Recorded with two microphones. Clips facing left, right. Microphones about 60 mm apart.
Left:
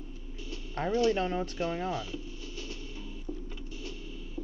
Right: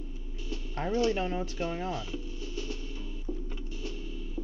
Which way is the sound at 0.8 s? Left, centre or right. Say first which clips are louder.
Left 1 dB; centre.